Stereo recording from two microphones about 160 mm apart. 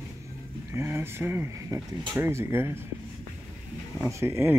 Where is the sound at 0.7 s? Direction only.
15° right (ahead or behind).